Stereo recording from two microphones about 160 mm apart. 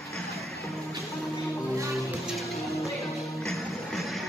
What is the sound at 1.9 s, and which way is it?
Music, centre (ahead or behind).